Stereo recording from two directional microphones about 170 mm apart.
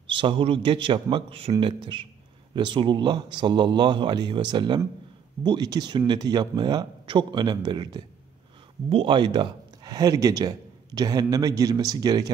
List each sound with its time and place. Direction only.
0.0 s speech: 30° right (ahead or behind)